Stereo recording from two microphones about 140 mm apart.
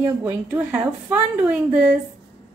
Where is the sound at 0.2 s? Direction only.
15° right (ahead or behind).